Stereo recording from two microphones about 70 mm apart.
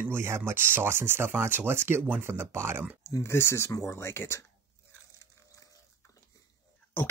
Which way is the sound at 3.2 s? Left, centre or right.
Left.